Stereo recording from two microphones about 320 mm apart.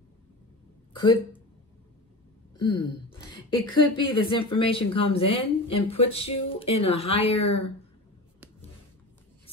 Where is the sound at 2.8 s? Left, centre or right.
Centre.